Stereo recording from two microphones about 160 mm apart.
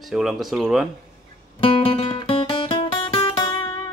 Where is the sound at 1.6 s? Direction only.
35° left (ahead or behind).